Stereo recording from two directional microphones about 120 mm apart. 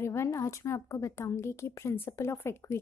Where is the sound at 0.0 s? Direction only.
20° left (ahead or behind).